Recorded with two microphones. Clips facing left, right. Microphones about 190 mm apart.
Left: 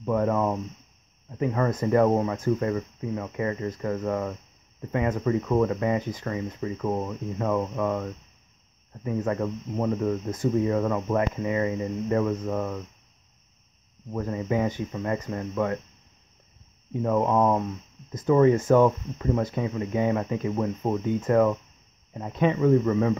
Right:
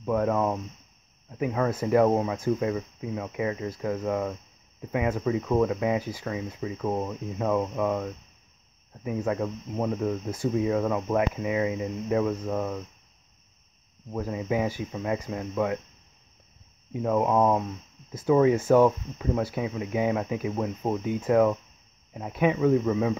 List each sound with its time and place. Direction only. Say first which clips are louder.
0.0 s speech: left 1 dB; centre (ahead or behind)
14.1 s speech: left 1 dB; 5° right (ahead or behind)
16.9 s speech: left 1 dB; 5° right (ahead or behind)